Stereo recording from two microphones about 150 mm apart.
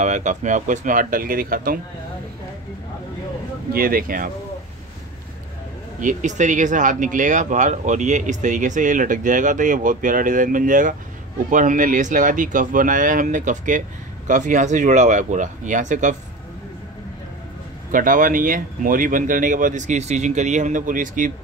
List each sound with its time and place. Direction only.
0.0 s speech: 55° right (ahead or behind); by 1.8 s 75° right (ahead or behind)
3.7 s speech: 75° right (ahead or behind)
5.9 s speech: 55° right (ahead or behind)
17.9 s speech: 65° right (ahead or behind)